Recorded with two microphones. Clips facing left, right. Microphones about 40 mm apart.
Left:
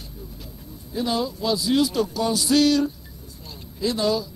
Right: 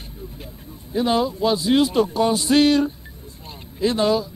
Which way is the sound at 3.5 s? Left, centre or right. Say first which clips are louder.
Right 4 dB; right.